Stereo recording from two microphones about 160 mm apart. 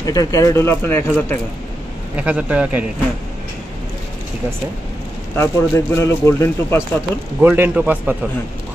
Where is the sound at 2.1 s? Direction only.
10° right (ahead or behind).